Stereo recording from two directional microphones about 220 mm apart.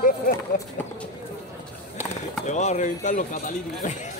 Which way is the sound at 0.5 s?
40° left (ahead or behind).